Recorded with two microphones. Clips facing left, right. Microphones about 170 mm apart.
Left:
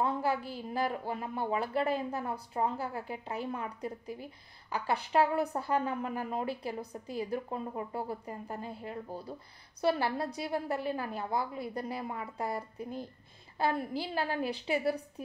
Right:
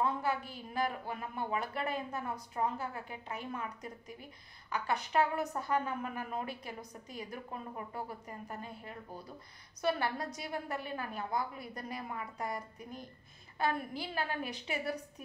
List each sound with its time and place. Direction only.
0.0 s a woman's voice: 30° left (ahead or behind)